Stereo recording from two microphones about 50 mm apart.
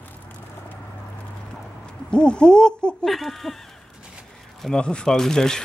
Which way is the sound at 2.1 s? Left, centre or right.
Centre.